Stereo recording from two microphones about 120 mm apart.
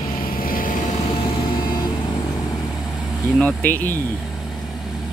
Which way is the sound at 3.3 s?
10° left (ahead or behind).